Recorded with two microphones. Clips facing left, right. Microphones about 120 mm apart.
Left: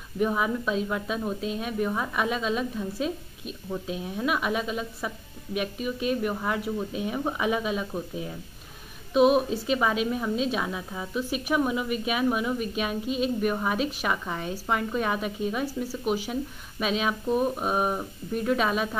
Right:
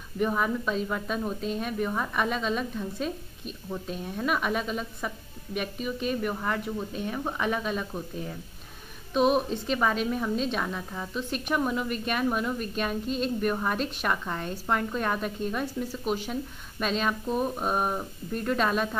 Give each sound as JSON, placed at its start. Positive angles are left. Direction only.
{"t": 0.2, "sound": "a woman's voice", "side_deg": 5}